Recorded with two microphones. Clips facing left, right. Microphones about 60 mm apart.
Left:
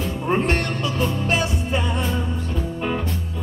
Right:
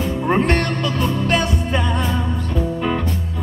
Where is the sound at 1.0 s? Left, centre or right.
Right.